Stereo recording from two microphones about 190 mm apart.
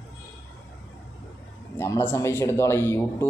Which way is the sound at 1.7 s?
15° left (ahead or behind).